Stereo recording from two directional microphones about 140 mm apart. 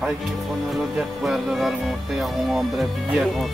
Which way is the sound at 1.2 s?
Centre (ahead or behind).